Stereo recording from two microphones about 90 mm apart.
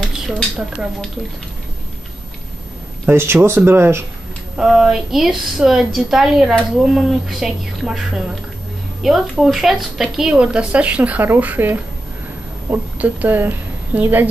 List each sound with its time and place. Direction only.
0.0 s speech: centre (ahead or behind)
3.1 s speech: 25° right (ahead or behind)
4.6 s a woman's voice: 5° right (ahead or behind)
9.0 s a woman's voice: 5° right (ahead or behind); by 14.2 s 25° right (ahead or behind)